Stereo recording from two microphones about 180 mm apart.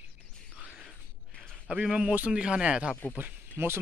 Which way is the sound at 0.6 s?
5° left (ahead or behind).